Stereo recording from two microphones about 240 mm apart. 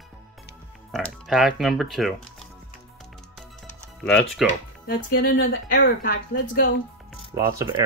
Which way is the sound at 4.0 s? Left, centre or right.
Centre.